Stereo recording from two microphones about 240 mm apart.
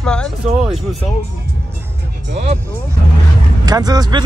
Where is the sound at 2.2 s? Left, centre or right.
Right.